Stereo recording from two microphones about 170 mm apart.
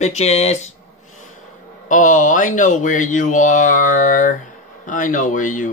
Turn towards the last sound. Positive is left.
turn(degrees=50)  # may be behind; listen again after turning